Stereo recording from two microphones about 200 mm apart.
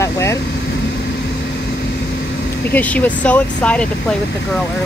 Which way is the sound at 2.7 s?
10° left (ahead or behind).